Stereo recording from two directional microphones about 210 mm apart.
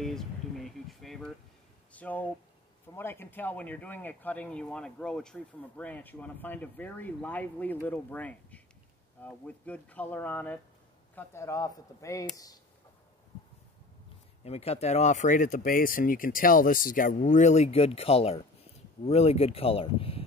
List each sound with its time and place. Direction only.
0.0 s a sound: centre (ahead or behind)
1.9 s speech: 5° left (ahead or behind)
14.4 s speech: 30° left (ahead or behind)